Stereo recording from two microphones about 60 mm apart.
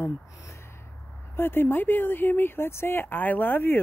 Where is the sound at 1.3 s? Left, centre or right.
Left.